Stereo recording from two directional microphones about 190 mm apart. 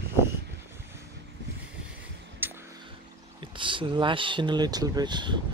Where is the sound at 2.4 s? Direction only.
10° right (ahead or behind).